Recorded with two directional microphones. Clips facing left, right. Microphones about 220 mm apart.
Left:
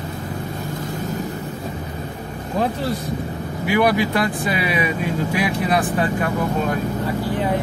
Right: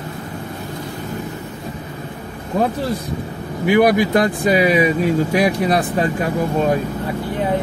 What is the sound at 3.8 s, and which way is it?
Speech, 45° right (ahead or behind).